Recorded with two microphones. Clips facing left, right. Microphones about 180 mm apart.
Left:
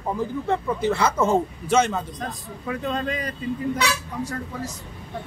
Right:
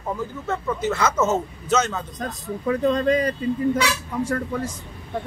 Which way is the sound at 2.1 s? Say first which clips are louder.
Right 4 dB; 40° right (ahead or behind).